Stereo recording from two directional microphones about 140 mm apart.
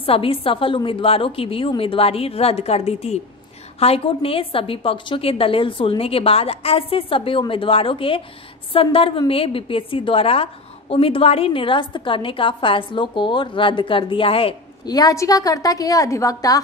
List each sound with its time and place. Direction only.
0.0 s a woman's voice: 40° left (ahead or behind)
14.9 s a woman's voice: 25° left (ahead or behind)